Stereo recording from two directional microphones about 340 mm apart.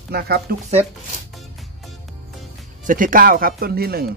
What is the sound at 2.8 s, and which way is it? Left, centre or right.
Speech, right.